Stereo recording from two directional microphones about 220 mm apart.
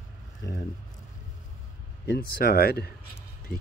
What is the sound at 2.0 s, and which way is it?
Speech, 45° left (ahead or behind).